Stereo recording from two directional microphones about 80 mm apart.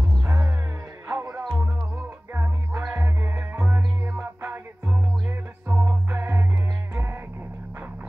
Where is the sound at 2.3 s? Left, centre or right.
Right.